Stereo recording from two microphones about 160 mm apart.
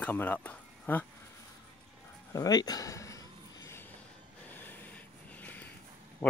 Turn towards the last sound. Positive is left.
turn(degrees=10)  # may be behind; listen again after turning